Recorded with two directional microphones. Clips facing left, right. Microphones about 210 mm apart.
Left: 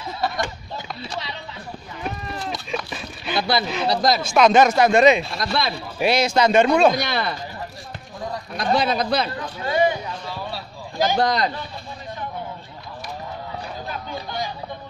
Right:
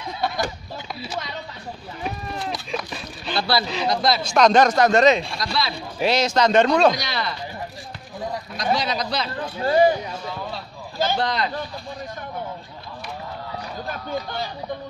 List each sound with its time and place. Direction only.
2.0 s livestock: centre (ahead or behind)
3.3 s speech: 20° left (ahead or behind)
3.6 s speech: 5° left (ahead or behind)
3.9 s speech: 40° left (ahead or behind)
4.2 s speech: 5° left (ahead or behind)
5.4 s speech: 50° left (ahead or behind)
5.9 s speech: 10° left (ahead or behind)
7.0 s speech: 55° left (ahead or behind)
8.7 s speech: 55° left (ahead or behind)
9.6 s a man's voice: 35° right (ahead or behind)
10.5 s a sound: 15° left (ahead or behind)
11.1 s speech: 45° left (ahead or behind)